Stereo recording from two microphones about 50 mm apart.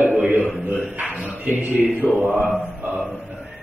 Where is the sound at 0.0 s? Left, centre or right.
Right.